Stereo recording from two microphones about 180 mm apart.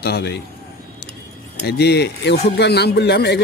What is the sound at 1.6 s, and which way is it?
Speech, 65° left (ahead or behind).